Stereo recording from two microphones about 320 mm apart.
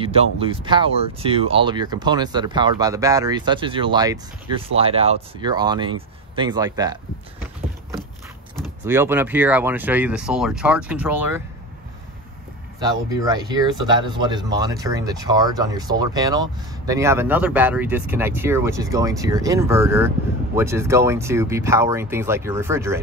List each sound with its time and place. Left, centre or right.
0.0 s speech: centre
8.8 s speech: centre
12.8 s speech: centre